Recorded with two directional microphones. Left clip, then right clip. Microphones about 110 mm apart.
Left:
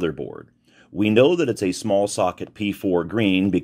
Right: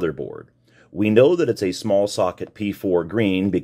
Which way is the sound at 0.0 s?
20° left (ahead or behind).